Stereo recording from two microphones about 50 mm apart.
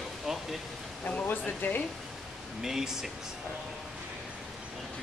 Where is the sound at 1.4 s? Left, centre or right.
Left.